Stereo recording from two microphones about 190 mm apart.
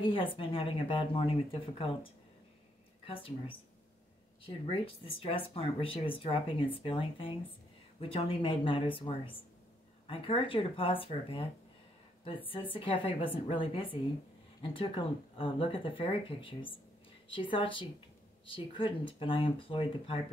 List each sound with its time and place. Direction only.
0.0 s speech: 25° left (ahead or behind)
3.1 s speech: 30° left (ahead or behind)